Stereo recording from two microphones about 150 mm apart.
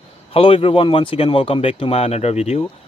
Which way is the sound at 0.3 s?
40° left (ahead or behind).